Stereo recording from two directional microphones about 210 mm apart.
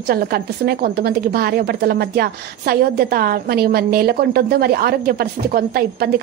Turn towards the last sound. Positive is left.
turn(degrees=-45)  # may be behind; listen again after turning